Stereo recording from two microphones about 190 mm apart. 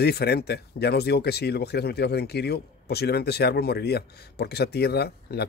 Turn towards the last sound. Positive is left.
turn(degrees=60)  # may be behind; listen again after turning